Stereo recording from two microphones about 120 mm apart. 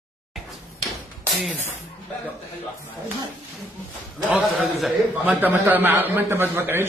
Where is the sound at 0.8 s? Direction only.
Centre (ahead or behind).